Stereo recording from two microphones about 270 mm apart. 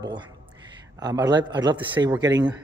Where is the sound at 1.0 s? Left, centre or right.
Centre.